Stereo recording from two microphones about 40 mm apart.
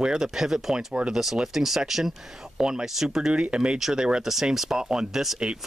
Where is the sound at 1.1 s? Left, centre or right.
Centre.